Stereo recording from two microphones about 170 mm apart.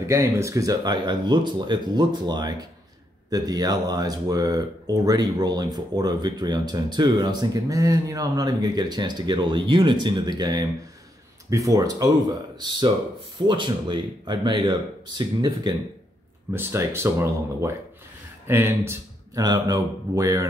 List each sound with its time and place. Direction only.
0.1 s speech: 15° right (ahead or behind)